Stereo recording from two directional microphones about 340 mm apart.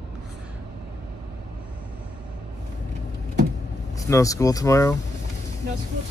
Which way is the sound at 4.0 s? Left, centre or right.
Centre.